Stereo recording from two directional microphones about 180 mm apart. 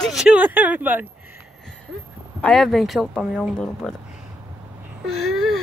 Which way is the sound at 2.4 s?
5° left (ahead or behind).